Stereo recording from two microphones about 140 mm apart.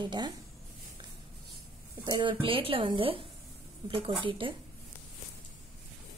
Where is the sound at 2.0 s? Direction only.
35° right (ahead or behind).